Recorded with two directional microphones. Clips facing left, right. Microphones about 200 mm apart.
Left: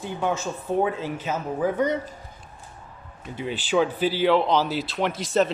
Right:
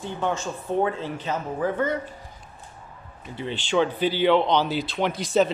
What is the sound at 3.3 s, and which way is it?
Speech, 5° left (ahead or behind).